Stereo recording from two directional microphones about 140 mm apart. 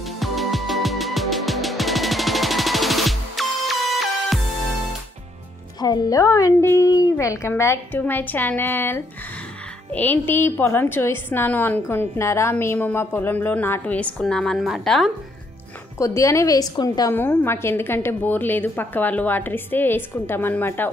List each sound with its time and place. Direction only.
0.2 s music: centre (ahead or behind)
5.8 s a woman's voice: 30° left (ahead or behind); by 15.0 s centre (ahead or behind)
16.0 s speech: 20° left (ahead or behind)
17.1 s a woman's voice: 15° left (ahead or behind)